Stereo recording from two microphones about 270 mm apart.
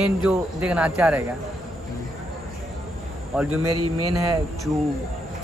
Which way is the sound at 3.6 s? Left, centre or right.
Right.